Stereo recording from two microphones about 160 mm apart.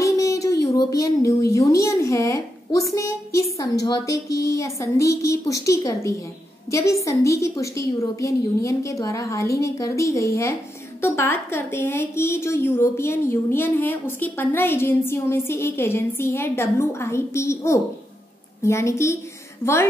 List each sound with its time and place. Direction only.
0.0 s a woman's voice: 20° left (ahead or behind)